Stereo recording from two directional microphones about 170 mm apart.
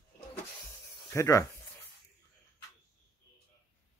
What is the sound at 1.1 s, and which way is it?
Speech, 15° left (ahead or behind).